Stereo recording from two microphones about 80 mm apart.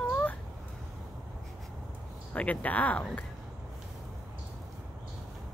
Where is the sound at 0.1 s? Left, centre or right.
Centre.